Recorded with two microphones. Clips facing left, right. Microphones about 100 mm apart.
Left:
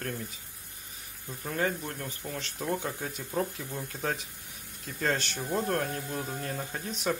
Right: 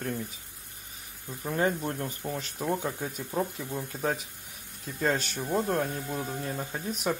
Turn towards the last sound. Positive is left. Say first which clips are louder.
# right 1 dB
turn(degrees=-10)  # may be behind; listen again after turning